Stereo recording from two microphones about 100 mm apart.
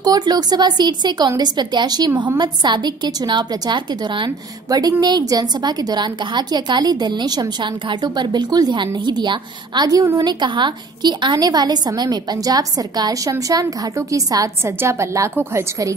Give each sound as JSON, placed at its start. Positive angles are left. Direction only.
{"t": 0.0, "sound": "a woman's voice", "side_deg": -40}